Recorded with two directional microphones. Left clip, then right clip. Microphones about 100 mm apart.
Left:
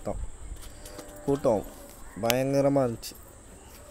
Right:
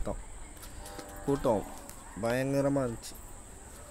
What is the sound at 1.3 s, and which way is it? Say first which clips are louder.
Speech: left 4 dB; 10° left (ahead or behind).